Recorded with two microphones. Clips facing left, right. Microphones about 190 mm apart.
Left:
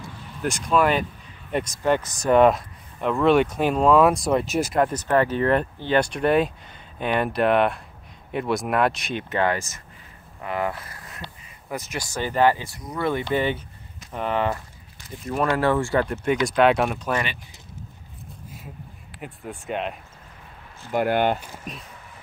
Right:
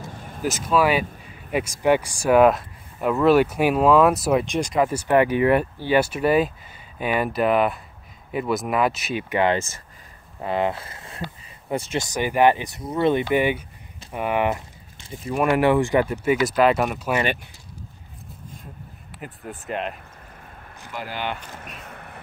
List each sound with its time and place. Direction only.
0.0 s a sound: 50° right (ahead or behind)
0.4 s speech: 5° right (ahead or behind)
4.8 s speech: 10° right (ahead or behind)
9.4 s speech: 25° right (ahead or behind)
15.2 s speech: 10° right (ahead or behind)
19.1 s speech: centre (ahead or behind)
20.9 s speech: 55° left (ahead or behind)
21.7 s a sound: 65° right (ahead or behind)